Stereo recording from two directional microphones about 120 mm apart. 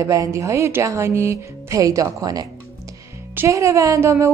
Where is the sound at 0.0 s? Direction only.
25° right (ahead or behind).